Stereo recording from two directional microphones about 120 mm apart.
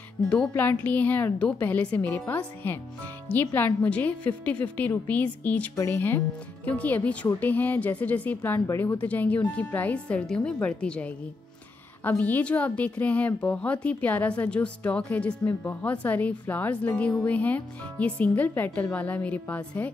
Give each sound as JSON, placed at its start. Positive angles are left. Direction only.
{"t": 0.6, "sound": "a woman's voice", "side_deg": 15}